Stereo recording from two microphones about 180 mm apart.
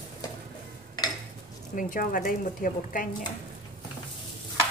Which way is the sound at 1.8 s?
50° left (ahead or behind).